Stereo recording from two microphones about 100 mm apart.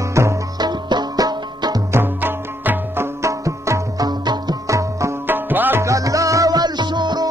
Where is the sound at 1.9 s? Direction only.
20° right (ahead or behind).